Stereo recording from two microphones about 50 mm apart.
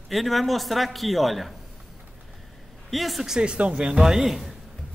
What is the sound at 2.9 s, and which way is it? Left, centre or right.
Speech, centre.